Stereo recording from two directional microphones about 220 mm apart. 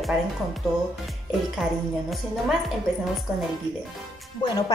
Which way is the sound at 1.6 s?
Centre (ahead or behind).